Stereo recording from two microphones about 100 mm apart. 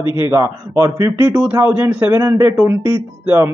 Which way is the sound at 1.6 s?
15° right (ahead or behind).